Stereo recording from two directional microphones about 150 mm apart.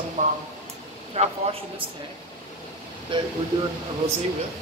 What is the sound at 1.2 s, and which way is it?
Speech, 40° right (ahead or behind).